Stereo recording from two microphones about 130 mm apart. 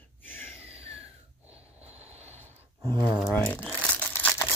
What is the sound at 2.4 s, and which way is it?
Gasp, 25° right (ahead or behind).